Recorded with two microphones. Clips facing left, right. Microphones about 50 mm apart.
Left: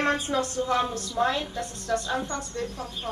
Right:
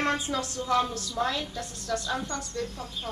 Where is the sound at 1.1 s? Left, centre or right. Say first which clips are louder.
Left 4 dB; left.